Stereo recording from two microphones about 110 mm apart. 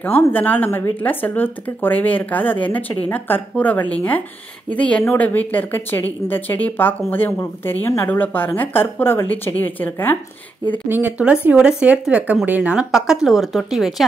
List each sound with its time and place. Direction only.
0.0 s a woman's voice: 15° left (ahead or behind)
10.9 s speech: 15° right (ahead or behind); by 14.0 s centre (ahead or behind)